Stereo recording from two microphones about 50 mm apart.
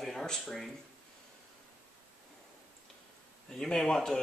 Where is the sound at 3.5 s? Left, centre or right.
Centre.